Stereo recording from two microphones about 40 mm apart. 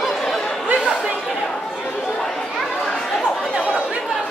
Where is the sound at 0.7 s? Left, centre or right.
Right.